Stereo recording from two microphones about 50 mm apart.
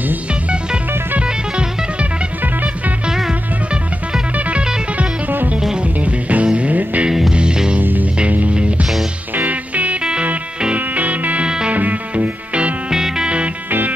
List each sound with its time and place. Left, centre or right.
4.5 s music: right
6.3 s music: right
7.1 s music: centre
7.8 s music: right
12.9 s music: centre
13.7 s music: right